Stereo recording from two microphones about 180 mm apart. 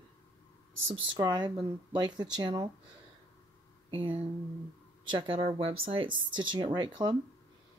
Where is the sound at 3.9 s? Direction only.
30° right (ahead or behind).